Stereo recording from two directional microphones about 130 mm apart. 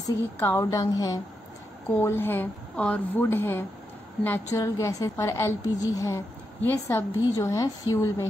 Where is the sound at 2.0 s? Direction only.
15° left (ahead or behind).